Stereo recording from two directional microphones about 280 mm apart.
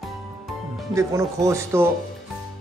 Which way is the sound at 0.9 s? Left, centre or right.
Centre.